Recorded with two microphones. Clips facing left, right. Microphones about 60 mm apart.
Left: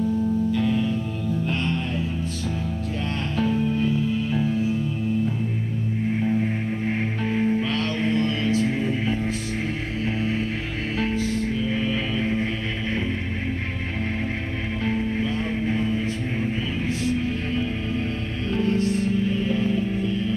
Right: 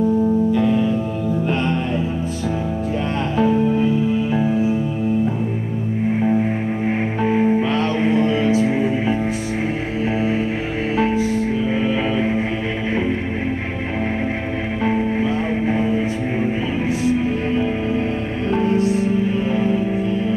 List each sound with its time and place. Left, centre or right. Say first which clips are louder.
0.5 s music: right 6 dB; centre
3.3 s music: right 6 dB; centre
6.2 s music: right 5 dB; right
11.0 s music: right 6 dB; centre
14.9 s music: right 6 dB; right
17.0 s music: right 7 dB; centre